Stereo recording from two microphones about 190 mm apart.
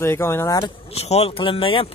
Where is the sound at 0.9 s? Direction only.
35° left (ahead or behind).